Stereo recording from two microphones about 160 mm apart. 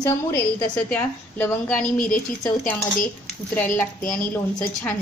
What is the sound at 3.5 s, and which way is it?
A woman's voice, 10° left (ahead or behind).